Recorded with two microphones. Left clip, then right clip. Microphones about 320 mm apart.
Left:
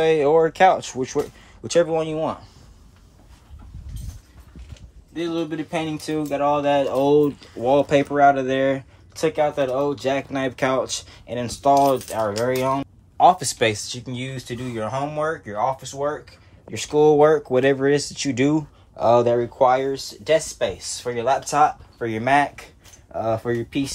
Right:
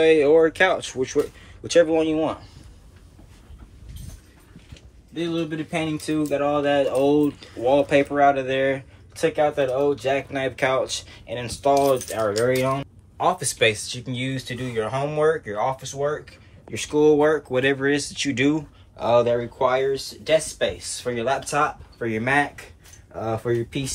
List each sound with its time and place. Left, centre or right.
0.0 s speech: left
5.8 s speech: left
12.2 s speech: centre